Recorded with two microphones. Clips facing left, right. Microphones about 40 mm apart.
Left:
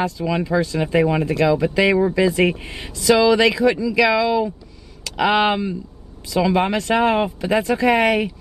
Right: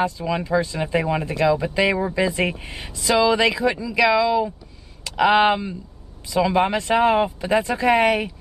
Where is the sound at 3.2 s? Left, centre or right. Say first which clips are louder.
Left 1 dB; centre.